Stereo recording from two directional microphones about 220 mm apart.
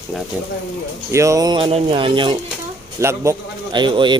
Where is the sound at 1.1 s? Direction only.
15° right (ahead or behind).